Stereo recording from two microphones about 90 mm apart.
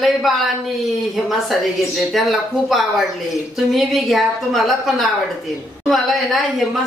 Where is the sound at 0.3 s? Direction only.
Centre (ahead or behind).